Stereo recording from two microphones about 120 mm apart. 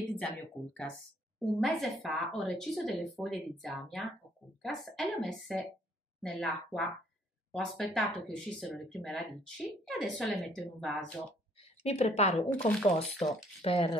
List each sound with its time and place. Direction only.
0.1 s speech: 10° left (ahead or behind)
11.8 s a woman's voice: 65° left (ahead or behind)
12.5 s speech: 10° left (ahead or behind)
13.1 s speech: centre (ahead or behind)
13.6 s a woman's voice: 55° left (ahead or behind)